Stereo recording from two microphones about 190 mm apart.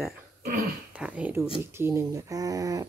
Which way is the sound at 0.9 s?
5° right (ahead or behind).